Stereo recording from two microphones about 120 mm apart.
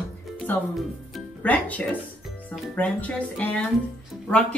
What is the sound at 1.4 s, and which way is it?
Speech, 15° left (ahead or behind).